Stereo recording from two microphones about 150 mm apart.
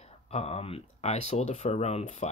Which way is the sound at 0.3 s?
40° left (ahead or behind).